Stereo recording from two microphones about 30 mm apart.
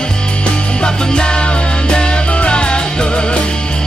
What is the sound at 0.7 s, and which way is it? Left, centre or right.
Music, left.